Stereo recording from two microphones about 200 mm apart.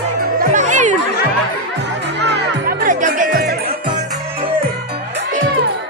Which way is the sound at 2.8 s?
40° right (ahead or behind).